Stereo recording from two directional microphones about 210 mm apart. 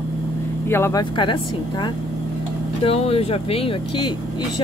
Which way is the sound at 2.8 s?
30° left (ahead or behind).